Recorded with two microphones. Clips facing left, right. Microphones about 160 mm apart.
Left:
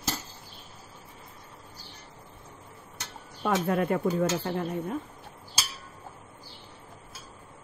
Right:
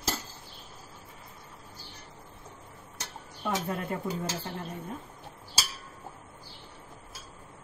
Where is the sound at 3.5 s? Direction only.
80° left.